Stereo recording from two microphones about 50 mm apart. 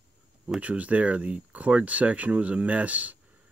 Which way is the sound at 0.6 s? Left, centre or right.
Right.